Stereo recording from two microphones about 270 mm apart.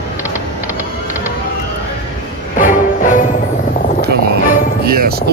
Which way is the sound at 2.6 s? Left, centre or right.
Left.